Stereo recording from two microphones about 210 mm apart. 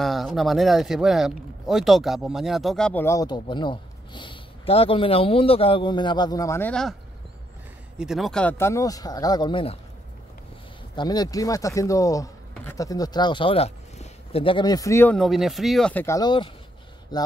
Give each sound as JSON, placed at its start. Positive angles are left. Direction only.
{"t": 0.0, "sound": "speech", "side_deg": 0}
{"t": 8.0, "sound": "speech", "side_deg": 0}
{"t": 11.0, "sound": "speech", "side_deg": 20}
{"t": 15.1, "sound": "speech", "side_deg": 0}